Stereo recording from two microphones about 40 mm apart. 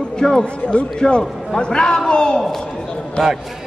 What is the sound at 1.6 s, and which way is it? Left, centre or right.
Speech, centre.